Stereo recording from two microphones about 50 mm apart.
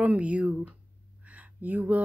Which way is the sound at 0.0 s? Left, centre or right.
Right.